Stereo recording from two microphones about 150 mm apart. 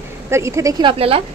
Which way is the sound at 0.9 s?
40° right (ahead or behind).